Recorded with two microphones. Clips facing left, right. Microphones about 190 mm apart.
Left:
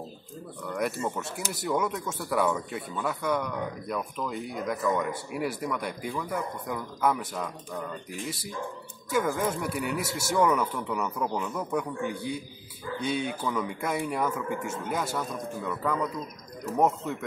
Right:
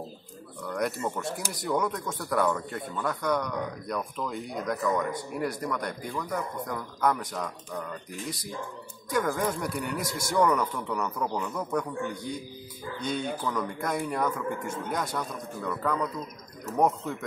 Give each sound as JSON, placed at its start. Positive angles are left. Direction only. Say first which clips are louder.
{"t": 0.7, "sound": "speech", "louder": "even", "side_deg": 0}